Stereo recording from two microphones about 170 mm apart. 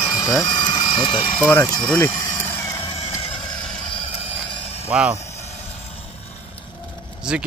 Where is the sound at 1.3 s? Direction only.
15° left (ahead or behind).